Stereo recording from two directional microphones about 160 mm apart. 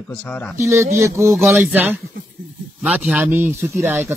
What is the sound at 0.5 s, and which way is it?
Speech, 15° right (ahead or behind).